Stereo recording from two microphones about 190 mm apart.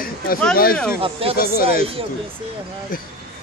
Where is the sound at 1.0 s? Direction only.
30° right (ahead or behind).